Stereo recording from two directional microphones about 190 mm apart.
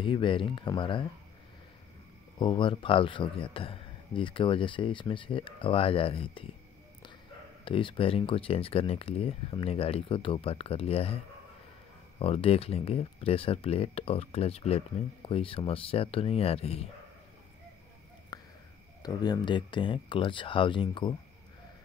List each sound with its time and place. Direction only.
0.0 s a man's voice: 25° left (ahead or behind)
2.3 s a man's voice: 25° left (ahead or behind)
7.6 s a man's voice: 25° left (ahead or behind)
12.2 s a man's voice: 30° left (ahead or behind)
18.3 s a sound: 20° left (ahead or behind)
19.0 s a man's voice: 20° left (ahead or behind)